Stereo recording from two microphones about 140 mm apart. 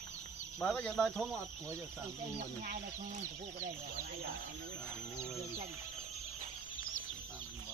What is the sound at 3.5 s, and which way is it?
Speech, 70° right (ahead or behind).